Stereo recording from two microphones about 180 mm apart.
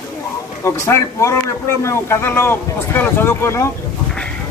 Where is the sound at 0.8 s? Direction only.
15° left (ahead or behind).